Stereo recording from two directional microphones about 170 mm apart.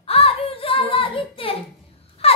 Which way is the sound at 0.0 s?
35° left (ahead or behind).